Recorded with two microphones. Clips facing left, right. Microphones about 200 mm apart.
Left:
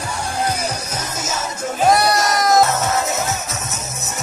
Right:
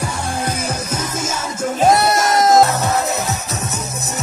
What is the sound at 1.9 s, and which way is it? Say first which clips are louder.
Music: right 1 dB; 25° right (ahead or behind).